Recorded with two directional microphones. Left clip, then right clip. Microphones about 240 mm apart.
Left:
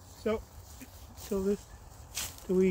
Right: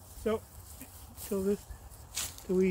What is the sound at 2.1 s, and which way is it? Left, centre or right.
Speech, centre.